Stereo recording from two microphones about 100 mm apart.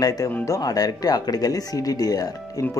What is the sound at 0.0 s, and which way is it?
Speech, 40° left (ahead or behind).